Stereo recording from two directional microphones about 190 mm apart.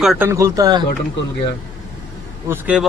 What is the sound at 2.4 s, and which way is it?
Speech, 10° right (ahead or behind).